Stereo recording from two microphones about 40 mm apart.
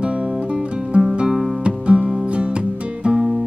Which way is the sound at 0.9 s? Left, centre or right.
Right.